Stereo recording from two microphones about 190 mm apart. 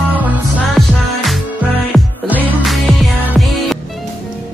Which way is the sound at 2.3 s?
10° right (ahead or behind).